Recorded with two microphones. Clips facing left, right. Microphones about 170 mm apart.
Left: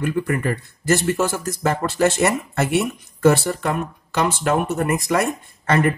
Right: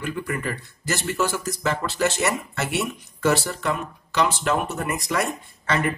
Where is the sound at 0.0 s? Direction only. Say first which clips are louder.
Left 6 dB; 55° left (ahead or behind).